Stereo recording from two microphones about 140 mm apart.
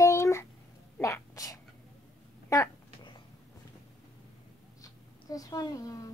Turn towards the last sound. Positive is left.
turn(degrees=25)  # may be behind; listen again after turning